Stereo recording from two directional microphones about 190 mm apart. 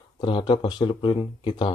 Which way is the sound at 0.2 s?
25° left (ahead or behind).